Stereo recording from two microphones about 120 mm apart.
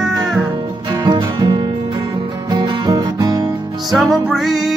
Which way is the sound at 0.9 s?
35° right (ahead or behind).